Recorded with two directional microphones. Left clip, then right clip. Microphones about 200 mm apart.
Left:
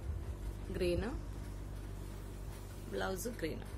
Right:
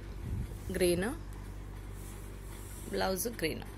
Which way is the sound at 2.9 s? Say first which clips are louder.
Right 6 dB; 25° right (ahead or behind).